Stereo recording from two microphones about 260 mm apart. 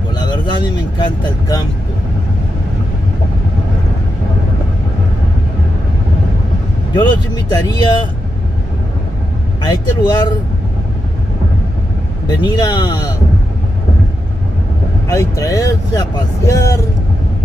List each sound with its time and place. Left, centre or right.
0.2 s speech: centre
6.9 s speech: centre
9.6 s speech: centre
12.3 s speech: centre
15.0 s speech: centre